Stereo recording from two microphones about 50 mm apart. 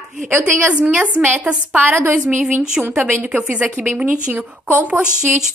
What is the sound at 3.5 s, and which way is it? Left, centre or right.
A woman's voice, right.